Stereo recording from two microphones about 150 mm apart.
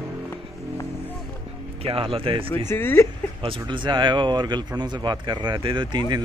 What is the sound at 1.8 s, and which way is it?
Speech, 40° right (ahead or behind).